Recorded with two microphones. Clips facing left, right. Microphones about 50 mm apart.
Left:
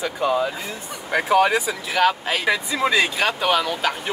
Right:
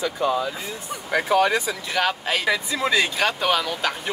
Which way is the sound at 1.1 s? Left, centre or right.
Centre.